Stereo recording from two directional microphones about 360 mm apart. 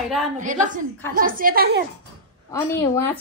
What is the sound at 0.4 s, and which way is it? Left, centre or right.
A woman's voice, right.